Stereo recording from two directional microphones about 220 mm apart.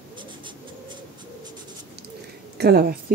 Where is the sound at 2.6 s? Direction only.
45° right (ahead or behind).